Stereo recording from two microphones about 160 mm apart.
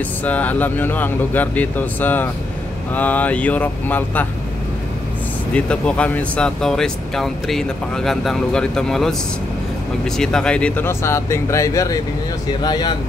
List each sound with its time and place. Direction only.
0.2 s speech: 10° left (ahead or behind)
5.5 s speech: 5° left (ahead or behind)